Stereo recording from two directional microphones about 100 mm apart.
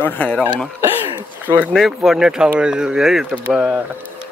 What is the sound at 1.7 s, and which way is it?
Speech, centre (ahead or behind).